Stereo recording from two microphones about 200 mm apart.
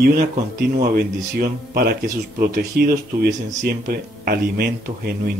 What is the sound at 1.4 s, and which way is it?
Speech, 50° right (ahead or behind).